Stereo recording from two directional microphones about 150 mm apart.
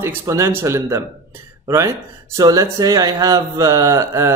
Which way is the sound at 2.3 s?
20° right (ahead or behind).